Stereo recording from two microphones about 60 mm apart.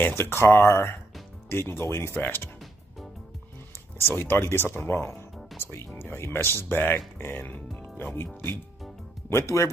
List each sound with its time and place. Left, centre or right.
0.0 s speech: left
2.1 s speech: left
4.0 s speech: left
9.3 s speech: left